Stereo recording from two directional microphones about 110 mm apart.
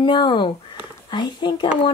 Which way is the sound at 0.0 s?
45° left (ahead or behind).